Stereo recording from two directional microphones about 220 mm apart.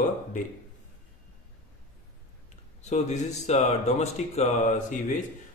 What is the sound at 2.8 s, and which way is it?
A man's voice, 30° left (ahead or behind).